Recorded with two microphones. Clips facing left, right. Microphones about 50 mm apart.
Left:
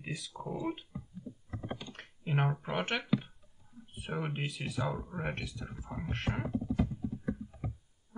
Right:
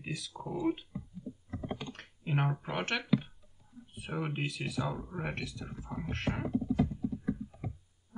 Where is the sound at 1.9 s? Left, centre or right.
Centre.